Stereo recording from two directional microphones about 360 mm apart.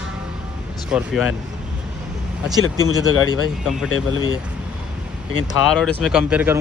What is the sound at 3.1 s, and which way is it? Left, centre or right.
Speech, left.